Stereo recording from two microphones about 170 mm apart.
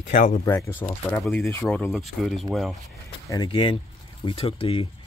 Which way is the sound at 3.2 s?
25° left (ahead or behind).